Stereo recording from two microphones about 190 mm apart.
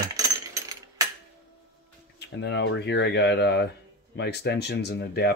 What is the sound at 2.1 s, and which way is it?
Speech, 65° left (ahead or behind).